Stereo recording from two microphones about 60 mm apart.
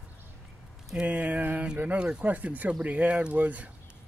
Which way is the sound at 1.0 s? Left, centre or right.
Right.